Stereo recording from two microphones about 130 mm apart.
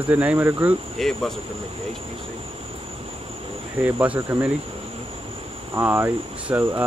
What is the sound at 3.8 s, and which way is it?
Speech, 10° right (ahead or behind).